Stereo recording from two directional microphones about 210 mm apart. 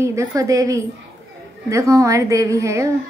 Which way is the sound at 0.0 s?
15° right (ahead or behind).